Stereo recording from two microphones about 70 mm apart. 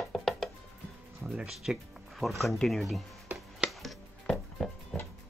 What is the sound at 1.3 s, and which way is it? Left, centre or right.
Speech, centre.